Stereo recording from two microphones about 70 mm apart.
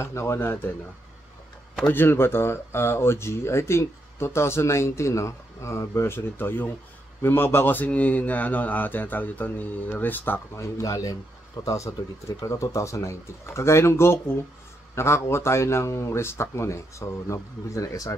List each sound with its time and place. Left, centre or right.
0.0 s speech: left
1.9 s speech: left
10.5 s speech: left
11.6 s speech: left